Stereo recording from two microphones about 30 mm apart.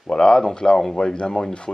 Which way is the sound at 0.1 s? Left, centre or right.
Left.